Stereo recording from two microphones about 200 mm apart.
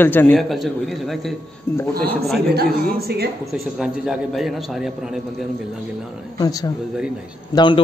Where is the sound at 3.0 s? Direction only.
50° right (ahead or behind).